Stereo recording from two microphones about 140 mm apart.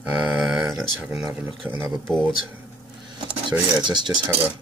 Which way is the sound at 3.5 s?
30° right (ahead or behind).